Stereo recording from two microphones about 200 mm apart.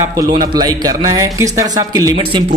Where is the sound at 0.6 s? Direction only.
20° right (ahead or behind).